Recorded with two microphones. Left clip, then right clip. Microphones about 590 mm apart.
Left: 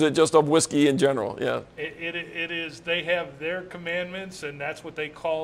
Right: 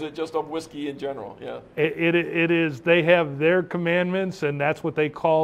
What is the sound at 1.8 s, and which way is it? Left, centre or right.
A man's voice, right.